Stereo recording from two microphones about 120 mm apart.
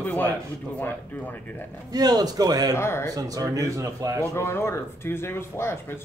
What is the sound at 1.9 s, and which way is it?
Speech, 35° right (ahead or behind).